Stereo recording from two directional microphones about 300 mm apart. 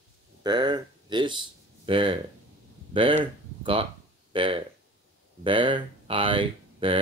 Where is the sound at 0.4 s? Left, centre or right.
Centre.